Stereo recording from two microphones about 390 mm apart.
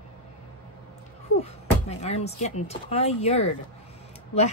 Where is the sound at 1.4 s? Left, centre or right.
Centre.